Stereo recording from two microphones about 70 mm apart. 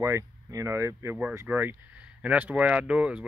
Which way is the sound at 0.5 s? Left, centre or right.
Right.